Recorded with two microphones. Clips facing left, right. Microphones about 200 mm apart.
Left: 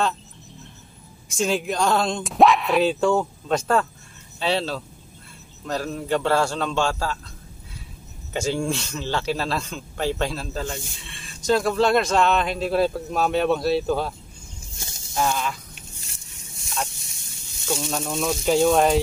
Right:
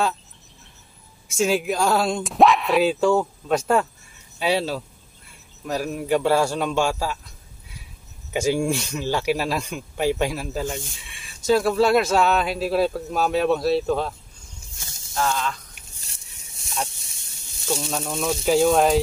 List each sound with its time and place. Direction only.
1.3 s a man's voice: 5° right (ahead or behind)
8.3 s a man's voice: 10° right (ahead or behind)
15.1 s speech: 10° left (ahead or behind)
15.9 s a sound: 35° right (ahead or behind)
17.6 s speech: centre (ahead or behind)